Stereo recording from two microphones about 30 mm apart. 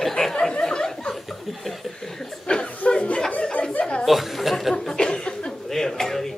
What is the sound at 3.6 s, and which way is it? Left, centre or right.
Chuckle, left.